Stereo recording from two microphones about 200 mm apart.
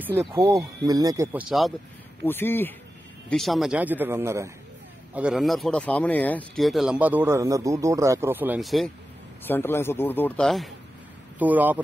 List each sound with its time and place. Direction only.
0.5 s speech: 20° right (ahead or behind)
2.2 s a man's voice: 10° left (ahead or behind)
9.5 s a man's voice: 10° left (ahead or behind); by 11.8 s 10° right (ahead or behind)